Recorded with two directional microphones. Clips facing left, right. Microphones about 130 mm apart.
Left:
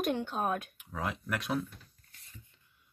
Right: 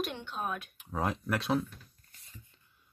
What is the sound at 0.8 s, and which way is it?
Speech, 35° right (ahead or behind).